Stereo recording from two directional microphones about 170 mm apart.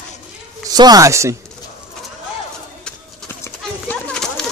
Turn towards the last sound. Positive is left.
turn(degrees=5)  # may be behind; listen again after turning